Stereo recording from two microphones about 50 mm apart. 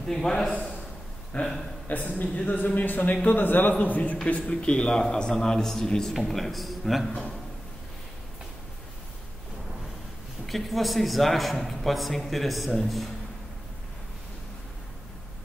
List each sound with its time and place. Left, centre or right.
0.0 s a man's voice: centre
1.3 s speech: left
1.9 s speech: left
4.3 s a man's voice: left; by 7.1 s centre
7.1 s a man's voice: left
10.4 s a man's voice: centre